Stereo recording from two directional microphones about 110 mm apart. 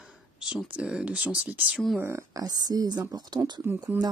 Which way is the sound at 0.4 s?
5° right (ahead or behind).